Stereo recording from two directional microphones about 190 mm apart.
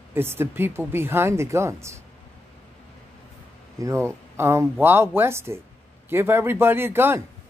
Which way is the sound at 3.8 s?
15° right (ahead or behind).